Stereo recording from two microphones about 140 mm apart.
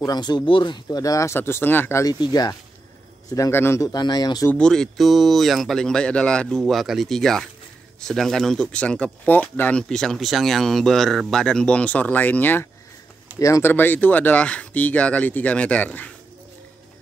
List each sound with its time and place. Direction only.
0.0 s speech: 30° left (ahead or behind)
0.8 s speech: 25° left (ahead or behind)
2.1 s speech: 30° left (ahead or behind)
4.5 s speech: 5° left (ahead or behind)